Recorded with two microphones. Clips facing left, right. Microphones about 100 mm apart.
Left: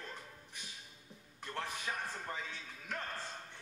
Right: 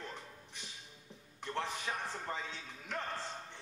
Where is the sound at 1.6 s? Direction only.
20° right (ahead or behind).